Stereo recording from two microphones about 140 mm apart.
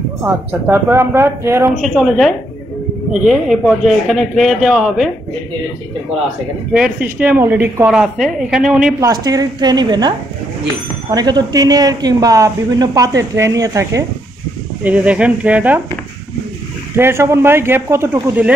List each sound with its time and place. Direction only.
0.2 s speech: 15° right (ahead or behind)
1.8 s speech: centre (ahead or behind)
6.7 s speech: 5° right (ahead or behind)
7.9 s speech: 5° right (ahead or behind)
9.0 s speech: 25° right (ahead or behind)
11.1 s speech: 30° right (ahead or behind)
14.8 s speech: 10° right (ahead or behind)
16.9 s speech: 15° right (ahead or behind)